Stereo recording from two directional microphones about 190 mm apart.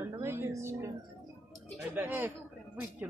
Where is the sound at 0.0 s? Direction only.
15° right (ahead or behind).